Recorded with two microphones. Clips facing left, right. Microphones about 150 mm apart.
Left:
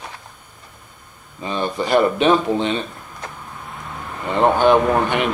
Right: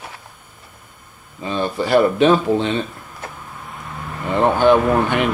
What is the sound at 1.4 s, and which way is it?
Speech, 20° left (ahead or behind).